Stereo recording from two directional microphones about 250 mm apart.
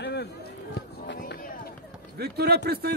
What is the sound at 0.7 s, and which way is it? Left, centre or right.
Run, left.